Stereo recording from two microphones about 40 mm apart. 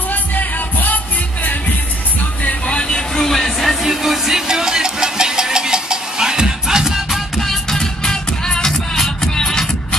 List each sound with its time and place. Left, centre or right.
0.1 s music: left
2.6 s vehicle: left
3.2 s music: centre
3.8 s music: centre
7.1 s music: centre
7.8 s music: centre